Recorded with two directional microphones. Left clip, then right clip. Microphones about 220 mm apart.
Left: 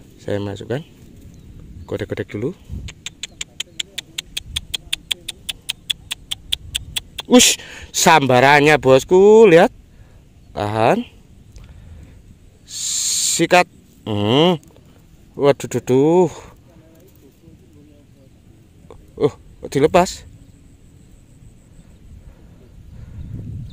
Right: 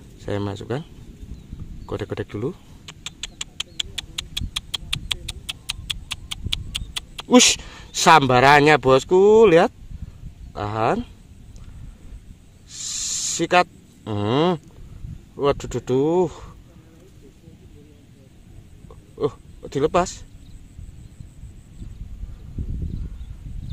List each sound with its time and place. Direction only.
0.2 s speech: 5° left (ahead or behind)
1.9 s a sound: 10° left (ahead or behind)
10.5 s speech: 15° left (ahead or behind)
12.6 s owl: 15° left (ahead or behind)
15.3 s speech: 15° left (ahead or behind)
19.1 s speech: 20° left (ahead or behind)